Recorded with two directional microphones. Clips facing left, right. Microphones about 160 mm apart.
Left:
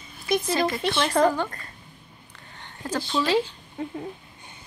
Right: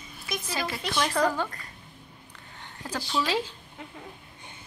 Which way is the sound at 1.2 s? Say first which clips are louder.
Left 6 dB; 45° left (ahead or behind).